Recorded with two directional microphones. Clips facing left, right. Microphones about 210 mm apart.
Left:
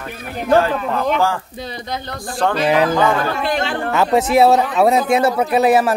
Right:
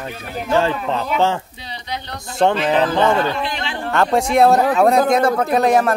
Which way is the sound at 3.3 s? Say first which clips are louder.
Left 4 dB; 50° left (ahead or behind).